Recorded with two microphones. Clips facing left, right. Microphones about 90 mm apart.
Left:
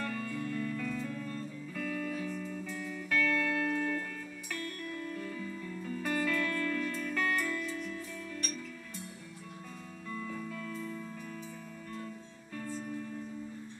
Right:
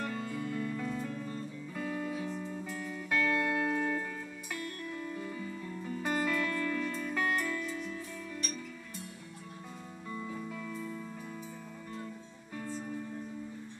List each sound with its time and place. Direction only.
0.0 s music: 20° right (ahead or behind)
2.7 s music: 10° right (ahead or behind)
10.1 s music: 20° right (ahead or behind)
12.5 s music: 15° right (ahead or behind)